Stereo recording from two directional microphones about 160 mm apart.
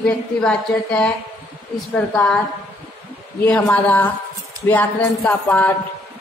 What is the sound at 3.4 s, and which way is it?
Speech, 10° left (ahead or behind).